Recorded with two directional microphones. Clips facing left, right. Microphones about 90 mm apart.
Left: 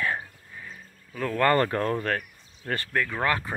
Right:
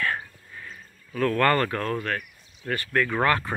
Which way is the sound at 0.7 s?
10° left (ahead or behind).